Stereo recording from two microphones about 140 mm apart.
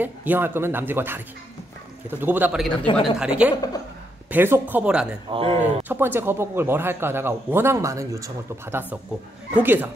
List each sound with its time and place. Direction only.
0.0 s a man's voice: 15° right (ahead or behind)
2.9 s speech: 40° left (ahead or behind)
3.2 s a man's voice: 10° right (ahead or behind)
5.3 s speech: 40° right (ahead or behind)
5.9 s a man's voice: 15° right (ahead or behind)